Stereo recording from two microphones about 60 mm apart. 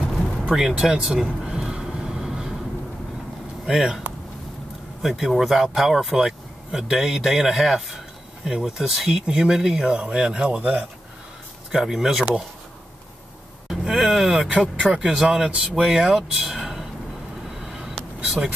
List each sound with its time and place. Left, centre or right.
0.1 s vehicle: centre
0.6 s vehicle: centre
3.6 s speech: centre
5.0 s speech: centre
11.7 s speech: centre
13.7 s speech: centre
14.5 s speech: centre
17.6 s a sound: centre